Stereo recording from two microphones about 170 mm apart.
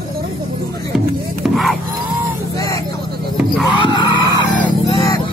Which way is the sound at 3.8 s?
25° left (ahead or behind).